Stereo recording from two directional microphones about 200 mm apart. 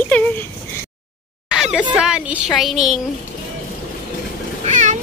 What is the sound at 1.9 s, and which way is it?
A woman's voice, 5° right (ahead or behind).